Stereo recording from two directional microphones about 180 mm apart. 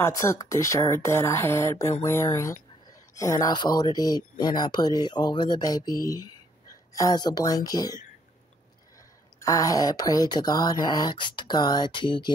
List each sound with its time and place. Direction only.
0.0 s speech: 15° left (ahead or behind)
9.4 s speech: 20° left (ahead or behind)